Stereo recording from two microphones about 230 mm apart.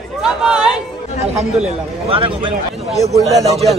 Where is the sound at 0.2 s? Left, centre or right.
Centre.